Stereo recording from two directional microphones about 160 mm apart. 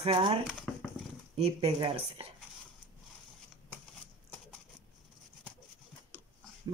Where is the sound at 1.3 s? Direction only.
40° right (ahead or behind).